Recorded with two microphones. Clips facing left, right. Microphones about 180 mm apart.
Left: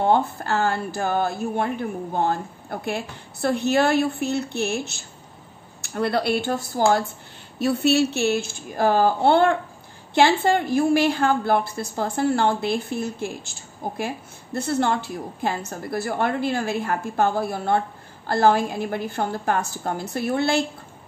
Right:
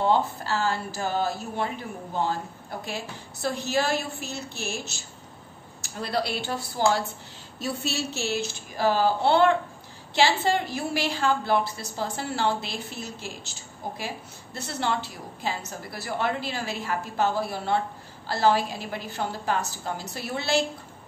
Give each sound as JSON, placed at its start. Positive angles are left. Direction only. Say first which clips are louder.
{"t": 0.0, "sound": "a woman's voice", "louder": "left 3 dB", "side_deg": 55}
{"t": 7.5, "sound": "a woman's voice", "louder": "left 11 dB", "side_deg": 65}